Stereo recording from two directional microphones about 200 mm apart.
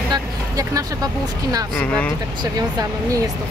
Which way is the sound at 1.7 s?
5° left (ahead or behind).